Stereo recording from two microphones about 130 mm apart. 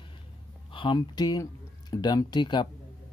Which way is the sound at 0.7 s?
40° left (ahead or behind).